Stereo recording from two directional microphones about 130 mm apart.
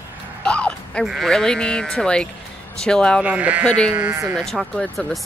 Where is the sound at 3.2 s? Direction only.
10° right (ahead or behind).